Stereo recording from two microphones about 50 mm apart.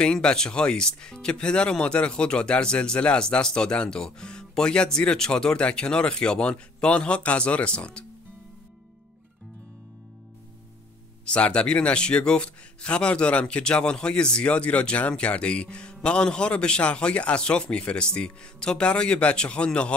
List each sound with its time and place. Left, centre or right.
0.0 s speech: centre
11.2 s speech: left